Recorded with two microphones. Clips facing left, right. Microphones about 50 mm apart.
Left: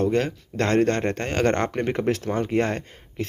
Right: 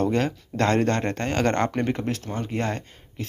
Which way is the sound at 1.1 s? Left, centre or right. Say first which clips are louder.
Left 1 dB; left.